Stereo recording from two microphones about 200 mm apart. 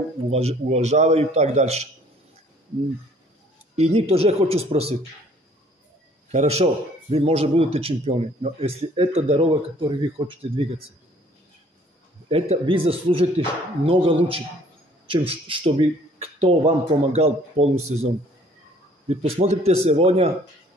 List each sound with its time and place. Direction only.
0.3 s a man's voice: 30° right (ahead or behind)
3.7 s a man's voice: 30° right (ahead or behind)
6.3 s speech: 30° right (ahead or behind)
12.3 s a man's voice: 30° right (ahead or behind)
19.0 s a man's voice: 30° right (ahead or behind)